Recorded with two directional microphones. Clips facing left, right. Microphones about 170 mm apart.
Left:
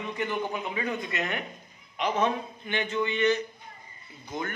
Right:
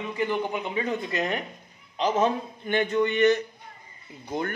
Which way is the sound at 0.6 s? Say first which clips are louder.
Right 3 dB; 25° right (ahead or behind).